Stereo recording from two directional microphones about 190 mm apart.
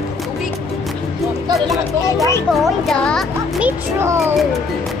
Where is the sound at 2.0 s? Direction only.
15° left (ahead or behind).